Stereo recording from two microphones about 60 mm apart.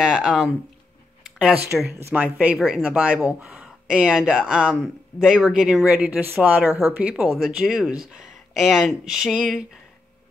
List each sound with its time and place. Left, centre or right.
0.0 s speech: centre
2.9 s speech: centre
7.3 s speech: centre